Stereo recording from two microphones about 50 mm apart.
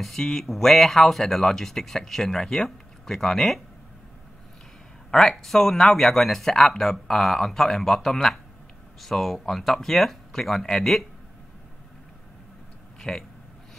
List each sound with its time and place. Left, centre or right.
0.0 s speech: centre
5.1 s speech: centre
13.0 s speech: centre